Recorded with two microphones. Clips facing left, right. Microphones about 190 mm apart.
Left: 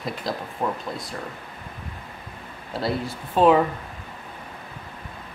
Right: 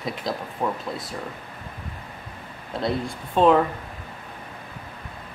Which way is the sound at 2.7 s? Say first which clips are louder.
Even; 5° left (ahead or behind).